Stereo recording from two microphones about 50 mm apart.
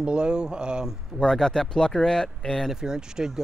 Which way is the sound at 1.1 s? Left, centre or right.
Centre.